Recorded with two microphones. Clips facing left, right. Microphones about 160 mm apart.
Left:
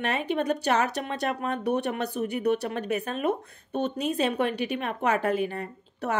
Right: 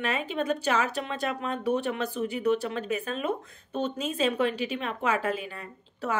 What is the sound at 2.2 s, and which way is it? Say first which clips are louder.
A woman's voice: even; 45° left (ahead or behind).